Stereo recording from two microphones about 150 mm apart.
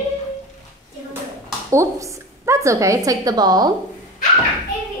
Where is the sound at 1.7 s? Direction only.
20° right (ahead or behind).